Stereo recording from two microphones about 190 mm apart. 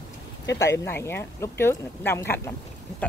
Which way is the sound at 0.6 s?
15° left (ahead or behind).